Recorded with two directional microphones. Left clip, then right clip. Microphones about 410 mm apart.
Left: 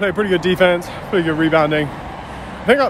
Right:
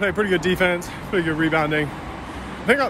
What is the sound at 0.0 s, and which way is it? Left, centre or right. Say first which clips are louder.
Speech: left 3 dB; centre.